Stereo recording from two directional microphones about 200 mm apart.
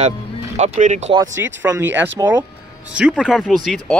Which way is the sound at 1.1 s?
15° right (ahead or behind).